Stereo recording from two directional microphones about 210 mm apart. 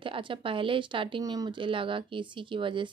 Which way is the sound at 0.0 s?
25° right (ahead or behind).